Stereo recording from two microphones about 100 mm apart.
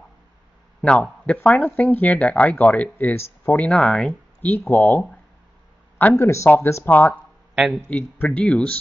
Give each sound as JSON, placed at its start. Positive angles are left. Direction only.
{"t": 0.7, "sound": "speech", "side_deg": 5}
{"t": 4.5, "sound": "speech", "side_deg": 20}
{"t": 7.5, "sound": "speech", "side_deg": -5}
{"t": 7.9, "sound": "speech", "side_deg": 15}